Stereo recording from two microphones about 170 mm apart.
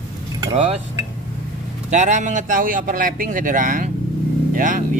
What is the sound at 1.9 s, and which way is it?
Speech, 45° right (ahead or behind).